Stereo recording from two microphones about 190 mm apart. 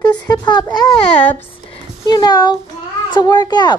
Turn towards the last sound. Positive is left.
turn(degrees=20)  # may be behind; listen again after turning